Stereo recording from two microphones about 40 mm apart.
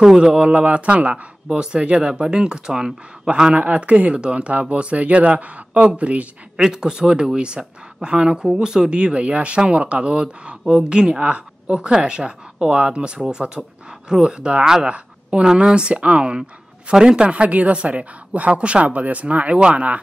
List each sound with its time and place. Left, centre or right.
0.0 s speech: centre
0.4 s speech: right
3.5 s speech: right
6.5 s speech: centre
8.6 s speech: centre
8.9 s speech: right
17.3 s speech: right